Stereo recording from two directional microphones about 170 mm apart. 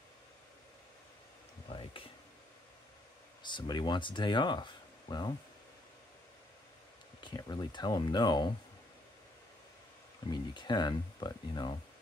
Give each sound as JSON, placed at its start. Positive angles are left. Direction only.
{"t": 1.7, "sound": "speech", "side_deg": 30}
{"t": 3.4, "sound": "speech", "side_deg": 25}
{"t": 7.2, "sound": "speech", "side_deg": 25}
{"t": 10.5, "sound": "speech", "side_deg": 25}